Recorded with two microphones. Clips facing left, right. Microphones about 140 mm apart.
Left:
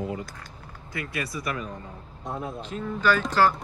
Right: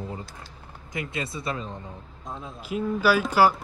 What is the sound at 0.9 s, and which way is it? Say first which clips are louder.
Speech: right 1 dB; 20° right (ahead or behind).